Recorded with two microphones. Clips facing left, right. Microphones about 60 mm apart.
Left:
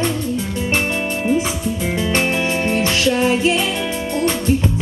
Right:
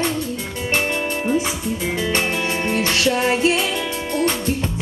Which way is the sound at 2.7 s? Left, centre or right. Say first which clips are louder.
Left 2 dB; left.